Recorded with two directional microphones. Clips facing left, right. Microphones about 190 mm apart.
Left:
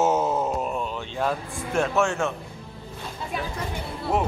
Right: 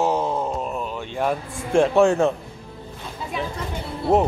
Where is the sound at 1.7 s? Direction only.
30° right (ahead or behind).